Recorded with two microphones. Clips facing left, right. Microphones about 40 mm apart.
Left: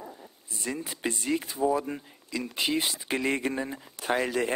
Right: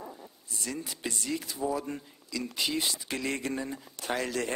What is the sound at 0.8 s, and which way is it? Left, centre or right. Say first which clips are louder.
A man's voice: left 5 dB; left.